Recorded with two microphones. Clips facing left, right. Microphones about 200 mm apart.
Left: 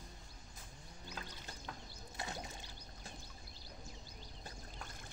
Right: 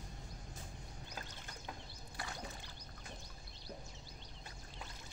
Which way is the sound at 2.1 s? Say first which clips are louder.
Left 2 dB; 25° left (ahead or behind).